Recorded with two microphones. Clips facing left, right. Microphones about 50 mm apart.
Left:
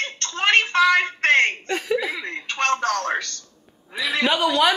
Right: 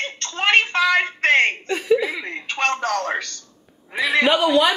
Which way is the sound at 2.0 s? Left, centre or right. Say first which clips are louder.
Right 2 dB; centre.